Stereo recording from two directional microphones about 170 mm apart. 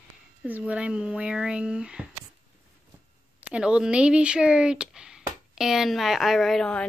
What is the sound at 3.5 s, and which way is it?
Speech, 5° right (ahead or behind).